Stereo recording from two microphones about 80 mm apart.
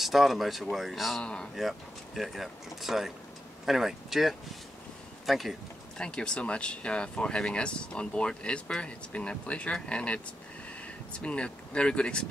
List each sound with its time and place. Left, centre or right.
0.0 s speech: centre
1.2 s speech: centre
1.5 s speech: centre
5.9 s speech: centre